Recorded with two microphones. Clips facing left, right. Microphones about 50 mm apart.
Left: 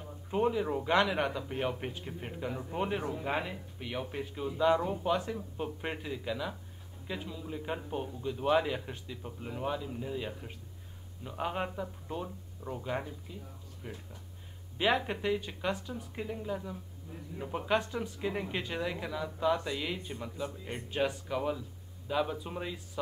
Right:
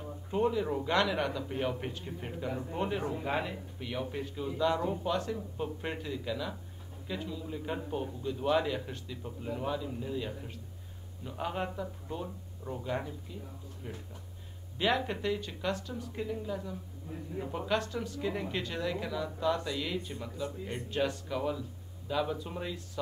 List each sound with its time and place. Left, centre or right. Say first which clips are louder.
0.3 s speech: even; centre